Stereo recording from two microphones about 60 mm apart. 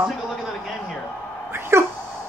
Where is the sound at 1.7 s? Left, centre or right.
Right.